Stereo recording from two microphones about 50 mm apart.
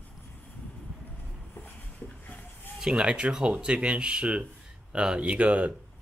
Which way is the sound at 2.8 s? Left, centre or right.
Centre.